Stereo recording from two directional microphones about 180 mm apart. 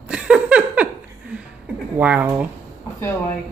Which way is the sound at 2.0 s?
10° right (ahead or behind).